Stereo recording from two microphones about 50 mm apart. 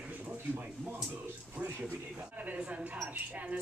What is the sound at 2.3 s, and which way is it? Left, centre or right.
Speech, right.